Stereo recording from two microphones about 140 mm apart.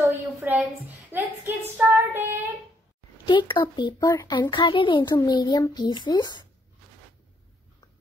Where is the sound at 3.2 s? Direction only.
35° left (ahead or behind).